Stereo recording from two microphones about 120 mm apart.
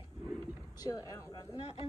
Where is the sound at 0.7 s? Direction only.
30° left (ahead or behind).